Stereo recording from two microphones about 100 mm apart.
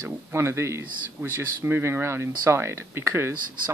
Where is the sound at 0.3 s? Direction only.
25° right (ahead or behind).